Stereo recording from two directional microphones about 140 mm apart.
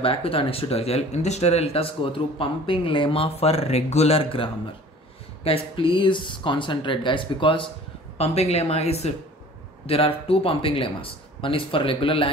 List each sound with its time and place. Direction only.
0.0 s speech: 40° left (ahead or behind)
8.2 s speech: 50° left (ahead or behind)